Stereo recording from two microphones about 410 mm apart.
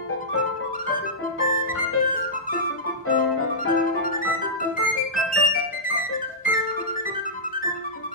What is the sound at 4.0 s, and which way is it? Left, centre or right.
Music, centre.